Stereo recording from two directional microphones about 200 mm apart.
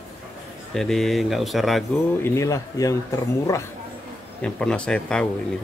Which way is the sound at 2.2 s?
15° left (ahead or behind).